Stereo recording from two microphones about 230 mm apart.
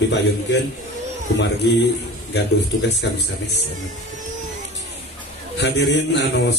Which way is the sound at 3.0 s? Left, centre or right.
Left.